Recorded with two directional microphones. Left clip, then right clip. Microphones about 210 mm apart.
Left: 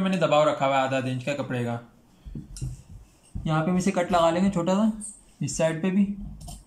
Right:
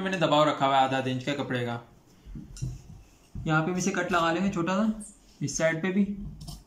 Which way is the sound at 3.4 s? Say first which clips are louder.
Left 1 dB; 15° left (ahead or behind).